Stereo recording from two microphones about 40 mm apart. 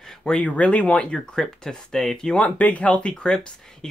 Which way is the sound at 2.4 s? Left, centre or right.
Left.